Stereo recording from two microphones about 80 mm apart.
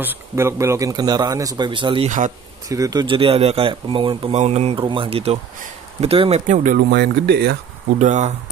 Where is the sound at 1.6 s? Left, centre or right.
Right.